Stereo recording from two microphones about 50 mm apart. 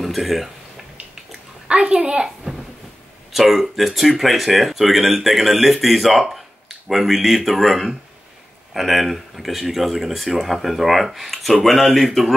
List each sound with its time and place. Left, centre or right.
0.0 s speech: centre
1.7 s a child's voice: centre
3.3 s speech: centre